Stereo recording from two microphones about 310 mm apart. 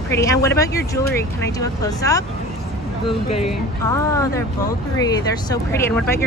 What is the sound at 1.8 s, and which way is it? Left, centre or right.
Speech, centre.